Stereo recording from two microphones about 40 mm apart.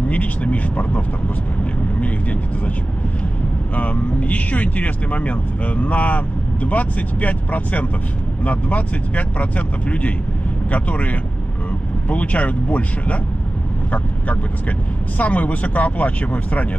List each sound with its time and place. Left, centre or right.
0.1 s speech: left
3.7 s speech: left